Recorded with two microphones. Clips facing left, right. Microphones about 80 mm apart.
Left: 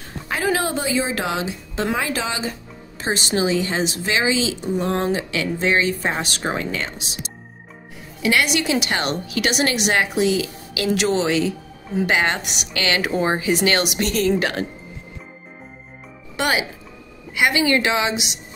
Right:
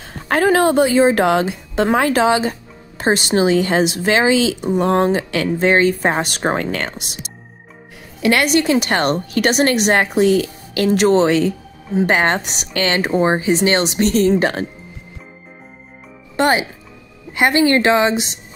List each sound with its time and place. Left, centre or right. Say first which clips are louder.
0.3 s a woman's voice: right 8 dB; right
16.3 s a woman's voice: right 6 dB; right